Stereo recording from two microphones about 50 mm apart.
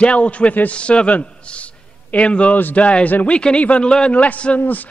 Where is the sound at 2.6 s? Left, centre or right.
Left.